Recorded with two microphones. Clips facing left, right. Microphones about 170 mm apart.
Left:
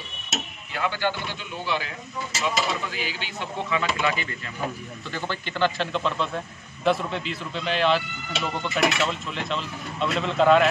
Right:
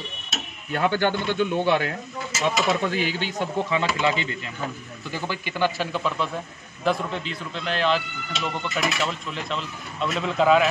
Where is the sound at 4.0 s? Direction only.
25° right (ahead or behind).